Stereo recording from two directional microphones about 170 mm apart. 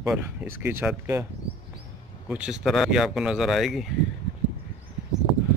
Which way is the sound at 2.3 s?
5° right (ahead or behind).